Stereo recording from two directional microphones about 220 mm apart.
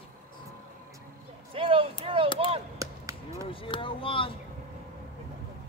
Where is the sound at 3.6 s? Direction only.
25° left (ahead or behind).